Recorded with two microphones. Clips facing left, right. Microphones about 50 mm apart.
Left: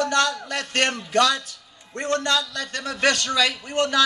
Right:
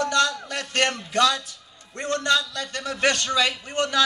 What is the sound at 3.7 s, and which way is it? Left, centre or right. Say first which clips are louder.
Speech: left 2 dB; left.